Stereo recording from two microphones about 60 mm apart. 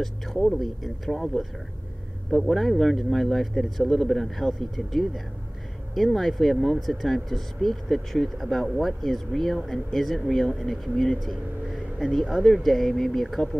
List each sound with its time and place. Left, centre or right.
0.0 s speech: centre